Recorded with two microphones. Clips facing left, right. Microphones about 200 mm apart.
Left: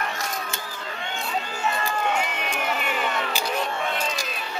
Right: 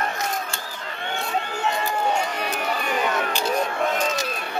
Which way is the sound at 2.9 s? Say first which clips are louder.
Right 3 dB; 40° right (ahead or behind).